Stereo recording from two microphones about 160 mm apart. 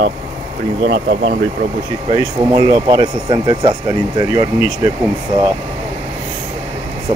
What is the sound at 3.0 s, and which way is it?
Speech, 30° right (ahead or behind).